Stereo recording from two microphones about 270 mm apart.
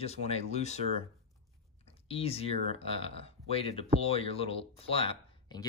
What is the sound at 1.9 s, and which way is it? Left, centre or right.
Speech, left.